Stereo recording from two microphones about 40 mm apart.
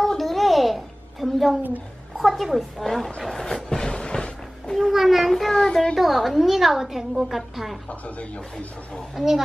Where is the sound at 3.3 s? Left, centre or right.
Centre.